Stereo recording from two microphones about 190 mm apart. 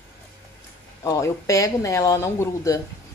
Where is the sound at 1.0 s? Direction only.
15° left (ahead or behind).